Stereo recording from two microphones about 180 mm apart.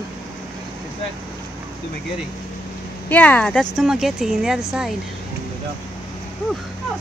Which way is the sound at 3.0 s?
10° left (ahead or behind).